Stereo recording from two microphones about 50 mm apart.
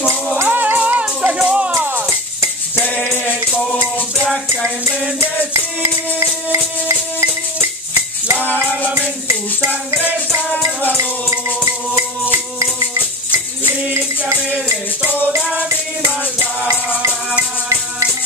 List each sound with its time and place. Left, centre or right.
0.5 s music: right
1.4 s music: centre
1.8 s music: right
5.5 s music: right
6.5 s music: right
8.3 s music: right
16.3 s music: right